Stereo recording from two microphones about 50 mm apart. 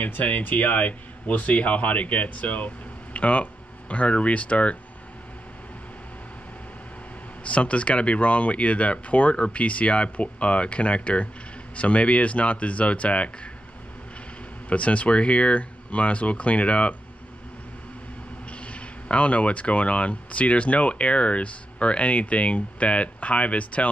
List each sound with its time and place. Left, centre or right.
0.0 s speech: left
7.4 s speech: left
14.7 s speech: left
18.7 s speech: left